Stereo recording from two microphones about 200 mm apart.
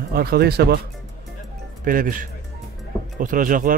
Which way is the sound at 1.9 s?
45° right (ahead or behind).